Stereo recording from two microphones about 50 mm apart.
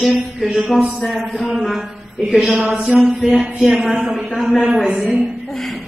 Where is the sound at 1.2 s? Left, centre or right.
Centre.